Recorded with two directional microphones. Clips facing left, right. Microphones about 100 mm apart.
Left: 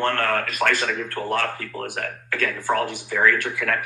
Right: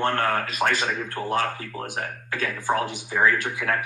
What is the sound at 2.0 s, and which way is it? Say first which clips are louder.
Speech: left 2 dB; 25° right (ahead or behind).